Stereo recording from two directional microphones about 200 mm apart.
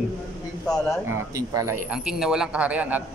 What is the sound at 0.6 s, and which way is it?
Speech, 5° left (ahead or behind).